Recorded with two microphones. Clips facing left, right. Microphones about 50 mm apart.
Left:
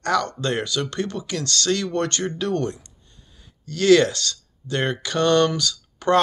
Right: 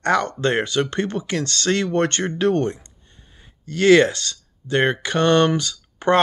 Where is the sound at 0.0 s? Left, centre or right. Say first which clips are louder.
Right 3 dB; right.